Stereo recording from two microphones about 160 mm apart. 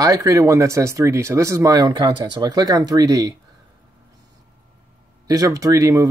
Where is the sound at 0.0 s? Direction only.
20° right (ahead or behind).